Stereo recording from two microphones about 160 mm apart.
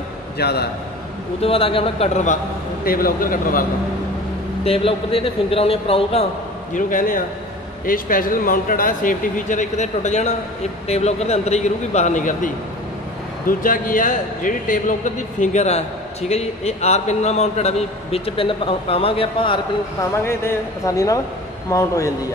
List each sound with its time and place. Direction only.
0.4 s a man's voice: 90° left
1.4 s a man's voice: 35° left (ahead or behind)
2.8 s speech: 65° left (ahead or behind)
4.6 s a man's voice: 35° left (ahead or behind)
6.7 s a man's voice: 55° left (ahead or behind)
13.5 s a man's voice: 60° left (ahead or behind); by 19.6 s 35° left (ahead or behind)
20.0 s speech: 20° left (ahead or behind)